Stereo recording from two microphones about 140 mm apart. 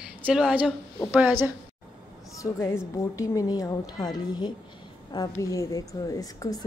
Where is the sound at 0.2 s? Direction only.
5° right (ahead or behind).